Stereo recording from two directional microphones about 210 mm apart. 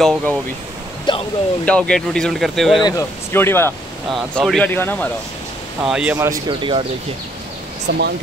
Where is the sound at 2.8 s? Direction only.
15° left (ahead or behind).